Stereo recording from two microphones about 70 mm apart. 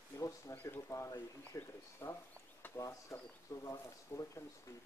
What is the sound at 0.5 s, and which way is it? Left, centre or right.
Speech, left.